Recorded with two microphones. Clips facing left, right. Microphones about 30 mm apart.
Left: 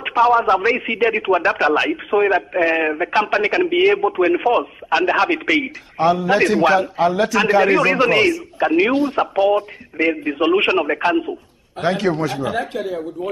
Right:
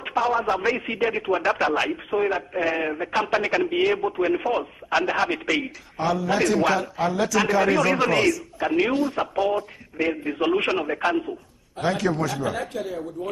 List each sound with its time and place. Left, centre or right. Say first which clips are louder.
0.2 s a man's voice: left 8 dB; left
4.2 s a man's voice: left 7 dB; left